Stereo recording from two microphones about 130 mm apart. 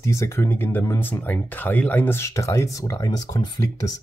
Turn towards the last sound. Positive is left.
turn(degrees=30)  # may be behind; listen again after turning